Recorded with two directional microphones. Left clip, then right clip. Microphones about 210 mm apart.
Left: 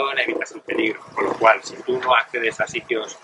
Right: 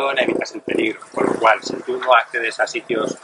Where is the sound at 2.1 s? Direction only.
40° right (ahead or behind).